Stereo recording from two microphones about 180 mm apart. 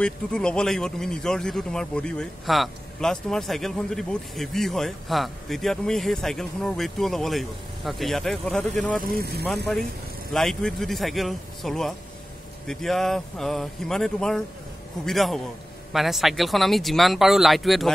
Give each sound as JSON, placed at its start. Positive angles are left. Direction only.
{"t": 0.0, "sound": "speech", "side_deg": 5}
{"t": 9.1, "sound": "speech", "side_deg": -60}
{"t": 10.3, "sound": "speech", "side_deg": 0}